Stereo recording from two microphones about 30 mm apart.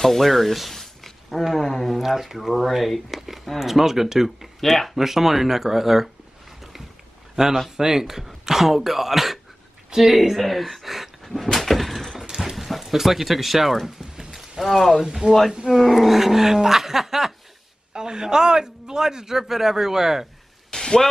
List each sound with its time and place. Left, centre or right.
0.0 s speech: centre
2.0 s a man's voice: centre
4.6 s speech: centre
4.9 s a man's voice: centre
7.4 s a man's voice: centre
11.5 s a sound: centre
12.3 s horse: centre
12.5 s a sound: centre
12.9 s speech: centre
15.2 s speech: right
15.8 s a man's voice: centre
17.9 s a man's voice: right
20.7 s a sound: left